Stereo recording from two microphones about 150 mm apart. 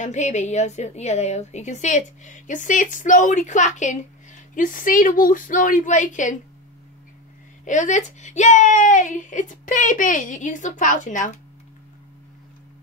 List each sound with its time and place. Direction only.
0.0 s a woman's voice: 50° left (ahead or behind)
7.6 s a woman's voice: 55° left (ahead or behind)